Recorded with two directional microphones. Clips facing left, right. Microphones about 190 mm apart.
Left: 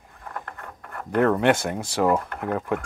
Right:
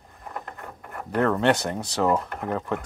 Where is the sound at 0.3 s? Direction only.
20° right (ahead or behind).